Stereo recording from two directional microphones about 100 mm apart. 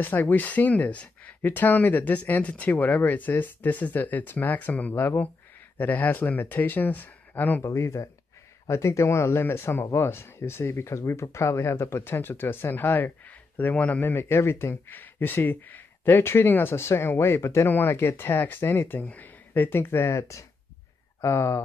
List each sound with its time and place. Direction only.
0.0 s speech: 20° left (ahead or behind)
7.6 s speech: 30° left (ahead or behind)